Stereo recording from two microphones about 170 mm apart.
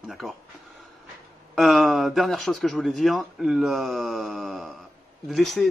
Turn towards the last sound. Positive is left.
turn(degrees=0)  # may be behind; listen again after turning